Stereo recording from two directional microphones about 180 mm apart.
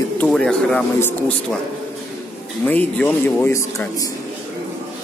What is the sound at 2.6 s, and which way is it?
A man's voice, 10° left (ahead or behind).